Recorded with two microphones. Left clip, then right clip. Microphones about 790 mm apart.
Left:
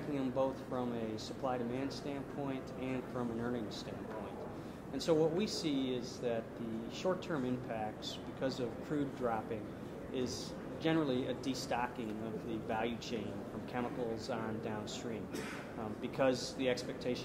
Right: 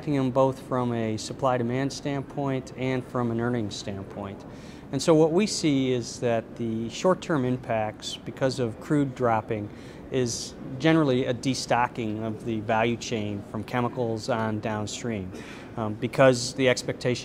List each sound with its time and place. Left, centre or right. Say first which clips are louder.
0.2 s speech: right 13 dB; right
4.9 s speech: right 12 dB; right
16.0 s speech: right 14 dB; right